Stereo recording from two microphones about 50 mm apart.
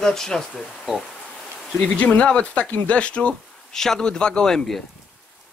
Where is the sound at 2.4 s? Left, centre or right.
Left.